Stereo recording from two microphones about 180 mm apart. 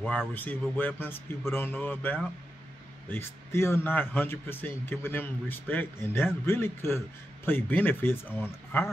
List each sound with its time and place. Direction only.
0.3 s a man's voice: 10° left (ahead or behind)